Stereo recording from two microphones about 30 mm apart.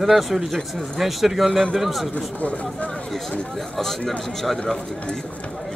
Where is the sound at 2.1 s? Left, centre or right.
Left.